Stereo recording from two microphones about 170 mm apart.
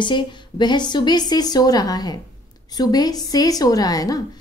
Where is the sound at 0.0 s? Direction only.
25° left (ahead or behind).